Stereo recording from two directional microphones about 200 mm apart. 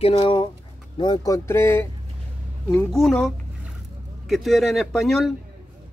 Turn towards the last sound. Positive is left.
turn(degrees=0)  # may be behind; listen again after turning